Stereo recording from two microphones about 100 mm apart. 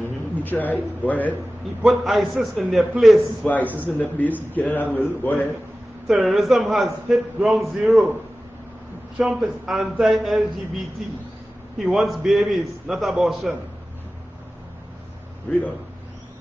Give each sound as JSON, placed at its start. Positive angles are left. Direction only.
{"t": 0.0, "sound": "speech", "side_deg": 20}
{"t": 1.8, "sound": "a man's voice", "side_deg": 0}
{"t": 3.4, "sound": "a man's voice", "side_deg": 15}
{"t": 6.0, "sound": "a man's voice", "side_deg": 0}
{"t": 9.2, "sound": "a man's voice", "side_deg": -5}
{"t": 11.8, "sound": "a man's voice", "side_deg": -5}
{"t": 15.5, "sound": "a man's voice", "side_deg": 15}